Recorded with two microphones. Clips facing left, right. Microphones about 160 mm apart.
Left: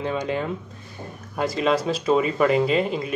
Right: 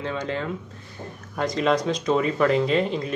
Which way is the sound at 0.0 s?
15° left (ahead or behind).